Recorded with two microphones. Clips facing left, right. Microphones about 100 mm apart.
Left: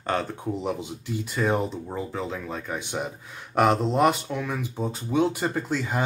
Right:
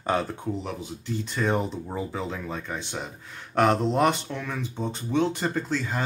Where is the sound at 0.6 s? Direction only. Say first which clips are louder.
Left 4 dB; 10° left (ahead or behind).